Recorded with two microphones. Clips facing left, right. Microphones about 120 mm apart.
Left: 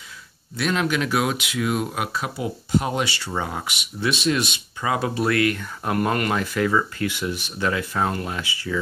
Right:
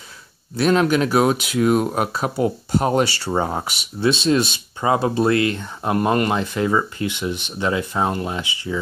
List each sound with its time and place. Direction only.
0.6 s speech: 40° right (ahead or behind); by 8.7 s 20° right (ahead or behind)